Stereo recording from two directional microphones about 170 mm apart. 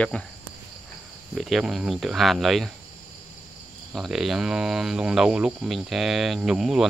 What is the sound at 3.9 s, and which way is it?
Speech, 5° right (ahead or behind).